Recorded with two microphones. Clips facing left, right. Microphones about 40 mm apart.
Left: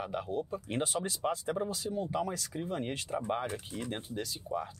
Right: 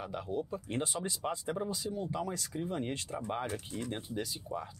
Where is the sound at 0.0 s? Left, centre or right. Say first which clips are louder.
Left 2 dB; centre.